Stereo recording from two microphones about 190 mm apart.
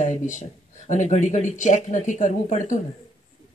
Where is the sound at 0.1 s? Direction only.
40° left (ahead or behind).